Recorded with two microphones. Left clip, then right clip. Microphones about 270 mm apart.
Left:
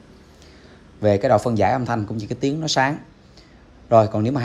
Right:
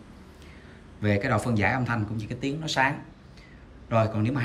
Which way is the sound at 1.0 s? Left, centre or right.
Centre.